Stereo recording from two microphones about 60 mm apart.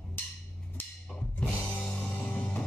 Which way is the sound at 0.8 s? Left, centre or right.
Left.